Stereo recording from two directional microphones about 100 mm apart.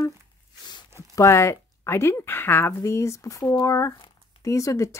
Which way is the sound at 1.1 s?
30° left (ahead or behind).